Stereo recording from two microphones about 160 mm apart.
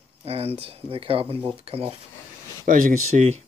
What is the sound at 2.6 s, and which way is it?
Speech, 60° right (ahead or behind).